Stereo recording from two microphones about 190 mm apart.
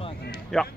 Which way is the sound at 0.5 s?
Centre (ahead or behind).